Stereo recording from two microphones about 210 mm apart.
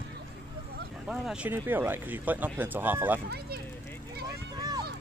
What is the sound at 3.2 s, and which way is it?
Speech, 50° right (ahead or behind).